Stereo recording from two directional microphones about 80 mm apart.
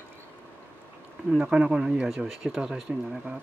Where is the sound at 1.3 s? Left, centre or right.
Centre.